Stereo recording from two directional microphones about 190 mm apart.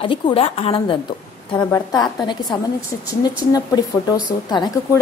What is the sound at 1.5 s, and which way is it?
Speech, 15° left (ahead or behind).